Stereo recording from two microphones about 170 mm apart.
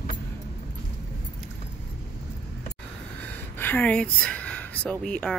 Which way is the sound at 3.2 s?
10° left (ahead or behind).